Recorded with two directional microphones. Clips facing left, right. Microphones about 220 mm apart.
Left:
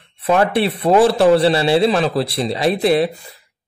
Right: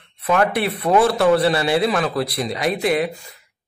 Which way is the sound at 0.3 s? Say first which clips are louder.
Left 3 dB; 30° left (ahead or behind).